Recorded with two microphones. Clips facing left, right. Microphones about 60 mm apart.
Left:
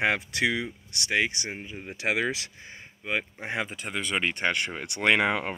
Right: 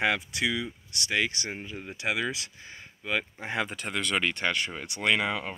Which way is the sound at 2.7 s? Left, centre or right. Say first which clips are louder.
Even; left.